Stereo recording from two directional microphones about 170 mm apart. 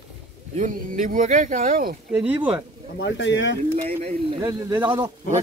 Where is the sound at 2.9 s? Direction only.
90° left.